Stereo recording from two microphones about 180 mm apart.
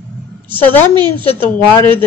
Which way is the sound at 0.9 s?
25° right (ahead or behind).